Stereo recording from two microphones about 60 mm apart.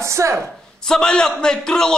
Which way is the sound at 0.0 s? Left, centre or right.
Right.